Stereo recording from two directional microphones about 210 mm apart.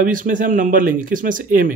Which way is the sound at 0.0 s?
40° right (ahead or behind).